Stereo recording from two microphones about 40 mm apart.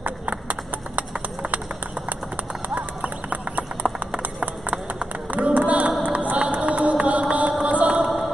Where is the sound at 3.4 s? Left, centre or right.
Right.